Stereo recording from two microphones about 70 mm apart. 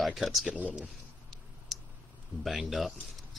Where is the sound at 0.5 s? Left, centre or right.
Right.